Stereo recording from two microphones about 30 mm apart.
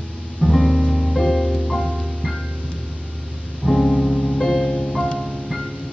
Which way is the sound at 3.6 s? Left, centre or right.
Centre.